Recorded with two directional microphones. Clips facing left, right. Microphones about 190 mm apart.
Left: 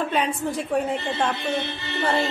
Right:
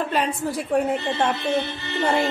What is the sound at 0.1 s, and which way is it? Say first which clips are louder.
A woman's voice: even; 5° right (ahead or behind).